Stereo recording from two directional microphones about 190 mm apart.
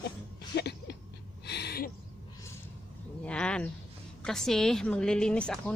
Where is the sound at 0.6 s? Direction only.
60° left (ahead or behind).